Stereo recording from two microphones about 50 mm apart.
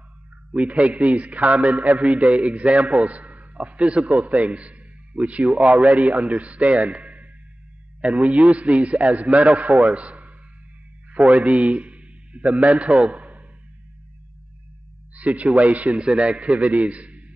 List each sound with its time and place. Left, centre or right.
0.5 s a man's voice: right
13.0 s a sound: right
15.1 s a man's voice: right